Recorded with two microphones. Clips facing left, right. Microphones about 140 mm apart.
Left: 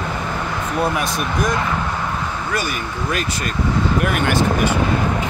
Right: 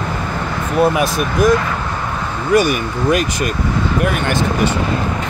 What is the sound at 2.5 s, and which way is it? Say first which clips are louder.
Speech: right 14 dB; 15° right (ahead or behind).